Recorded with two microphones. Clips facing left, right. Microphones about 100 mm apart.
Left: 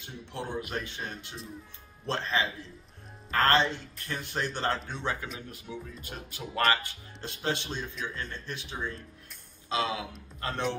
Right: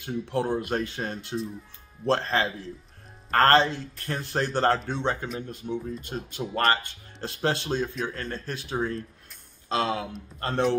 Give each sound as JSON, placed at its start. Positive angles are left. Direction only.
{"t": 0.0, "sound": "a man's voice", "side_deg": -45}
{"t": 6.6, "sound": "a man's voice", "side_deg": -40}